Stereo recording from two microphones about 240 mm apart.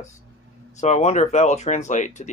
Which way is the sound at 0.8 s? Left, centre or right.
Left.